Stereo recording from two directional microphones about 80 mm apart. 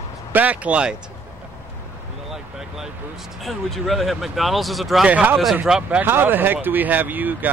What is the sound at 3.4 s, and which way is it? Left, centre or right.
Speech, centre.